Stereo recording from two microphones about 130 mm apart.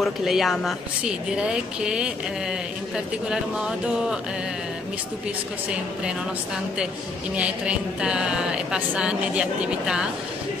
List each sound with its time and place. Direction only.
0.0 s a woman's voice: centre (ahead or behind)
3.3 s a woman's voice: 5° right (ahead or behind)
7.3 s speech: 10° right (ahead or behind)